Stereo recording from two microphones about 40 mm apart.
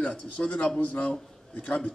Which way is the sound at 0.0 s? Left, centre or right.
Left.